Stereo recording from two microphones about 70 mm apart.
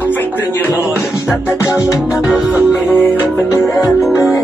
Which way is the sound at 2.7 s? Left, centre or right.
Left.